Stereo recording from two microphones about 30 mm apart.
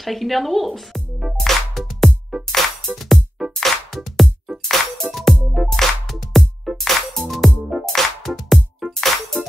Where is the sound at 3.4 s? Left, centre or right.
Centre.